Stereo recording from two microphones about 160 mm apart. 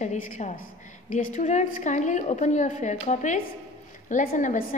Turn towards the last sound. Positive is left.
turn(degrees=55)  # may be behind; listen again after turning